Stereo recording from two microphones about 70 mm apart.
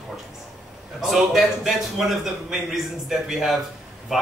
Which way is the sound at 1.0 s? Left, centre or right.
Centre.